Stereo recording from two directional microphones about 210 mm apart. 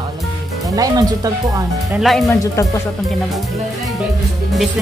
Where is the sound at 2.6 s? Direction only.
15° left (ahead or behind).